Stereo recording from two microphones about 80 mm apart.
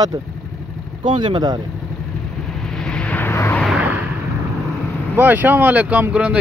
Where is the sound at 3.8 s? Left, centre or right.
Right.